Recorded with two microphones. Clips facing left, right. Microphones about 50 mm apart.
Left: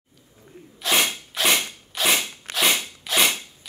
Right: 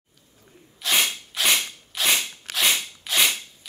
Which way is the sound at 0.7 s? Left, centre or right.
Centre.